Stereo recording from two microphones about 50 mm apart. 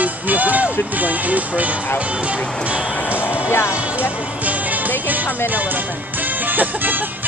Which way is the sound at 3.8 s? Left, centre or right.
Right.